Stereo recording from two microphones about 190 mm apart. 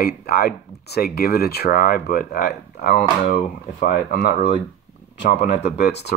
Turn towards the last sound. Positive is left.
turn(degrees=60)  # may be behind; listen again after turning